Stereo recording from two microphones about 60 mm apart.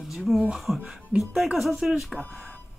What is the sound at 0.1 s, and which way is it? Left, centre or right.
Speech, centre.